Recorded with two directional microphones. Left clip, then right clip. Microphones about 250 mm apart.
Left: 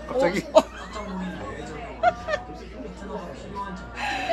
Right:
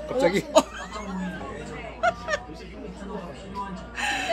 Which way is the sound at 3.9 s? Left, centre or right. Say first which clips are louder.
Right 1 dB; right.